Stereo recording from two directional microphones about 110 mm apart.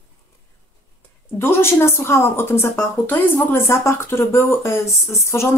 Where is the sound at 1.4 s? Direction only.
20° left (ahead or behind).